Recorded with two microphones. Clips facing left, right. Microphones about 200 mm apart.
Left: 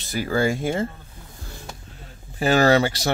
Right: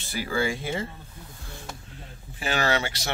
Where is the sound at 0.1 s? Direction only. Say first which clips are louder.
Left 5 dB; 45° left (ahead or behind).